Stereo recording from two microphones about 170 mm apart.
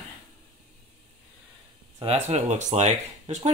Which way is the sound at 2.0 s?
40° right (ahead or behind).